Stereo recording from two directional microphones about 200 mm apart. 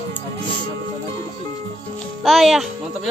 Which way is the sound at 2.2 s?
Centre (ahead or behind).